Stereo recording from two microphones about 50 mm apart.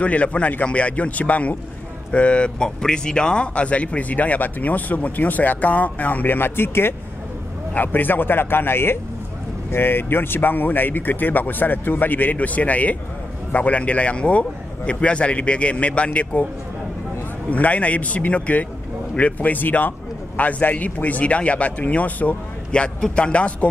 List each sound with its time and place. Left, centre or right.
0.0 s speech: left
7.7 s a man's voice: left
17.5 s speech: left